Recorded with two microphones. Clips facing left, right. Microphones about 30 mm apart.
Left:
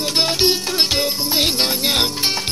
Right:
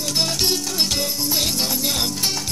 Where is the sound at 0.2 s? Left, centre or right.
Left.